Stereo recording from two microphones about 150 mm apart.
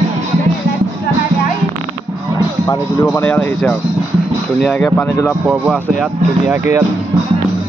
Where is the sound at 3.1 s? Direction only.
10° left (ahead or behind).